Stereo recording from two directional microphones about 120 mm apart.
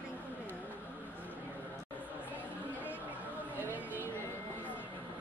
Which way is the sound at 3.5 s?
15° left (ahead or behind).